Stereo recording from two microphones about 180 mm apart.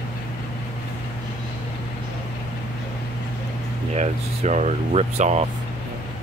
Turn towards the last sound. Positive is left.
turn(degrees=-40)  # may be behind; listen again after turning